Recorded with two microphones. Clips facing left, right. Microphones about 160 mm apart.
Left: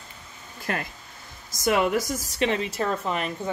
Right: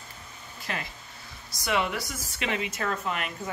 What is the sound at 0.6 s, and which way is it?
A woman's voice, 50° left (ahead or behind).